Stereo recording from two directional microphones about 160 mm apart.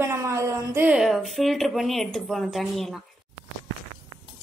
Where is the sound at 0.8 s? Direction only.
5° right (ahead or behind).